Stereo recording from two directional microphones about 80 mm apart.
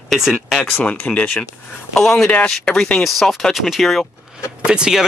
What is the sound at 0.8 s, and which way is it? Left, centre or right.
Speech, centre.